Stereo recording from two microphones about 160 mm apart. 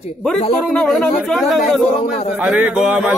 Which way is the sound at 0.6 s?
5° left (ahead or behind).